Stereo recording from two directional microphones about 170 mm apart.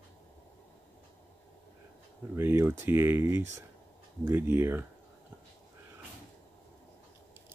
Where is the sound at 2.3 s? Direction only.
15° right (ahead or behind).